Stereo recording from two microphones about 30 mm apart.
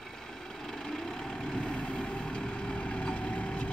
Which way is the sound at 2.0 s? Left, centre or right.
Left.